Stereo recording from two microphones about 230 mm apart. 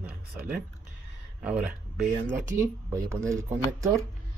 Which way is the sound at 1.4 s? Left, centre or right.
Centre.